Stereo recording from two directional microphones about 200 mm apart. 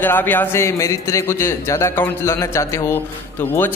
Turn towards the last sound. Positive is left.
turn(degrees=10)  # may be behind; listen again after turning